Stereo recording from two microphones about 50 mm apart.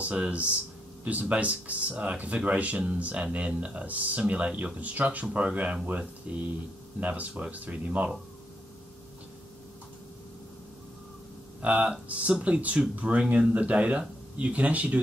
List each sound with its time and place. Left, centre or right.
0.1 s speech: right
11.6 s speech: right